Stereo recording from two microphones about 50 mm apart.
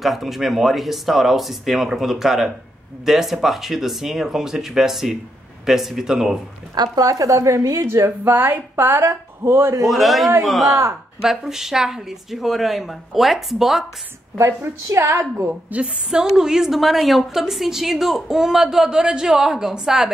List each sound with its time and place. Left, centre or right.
0.0 s a woman's voice: centre
7.4 s a woman's voice: right
8.2 s a woman's voice: right
9.0 s a woman's voice: right
9.8 s speech: centre
14.4 s a woman's voice: right
15.7 s a woman's voice: centre